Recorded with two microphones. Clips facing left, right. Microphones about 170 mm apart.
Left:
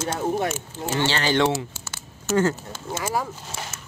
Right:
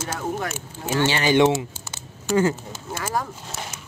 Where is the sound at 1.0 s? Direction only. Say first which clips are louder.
Right 4 dB; 15° right (ahead or behind).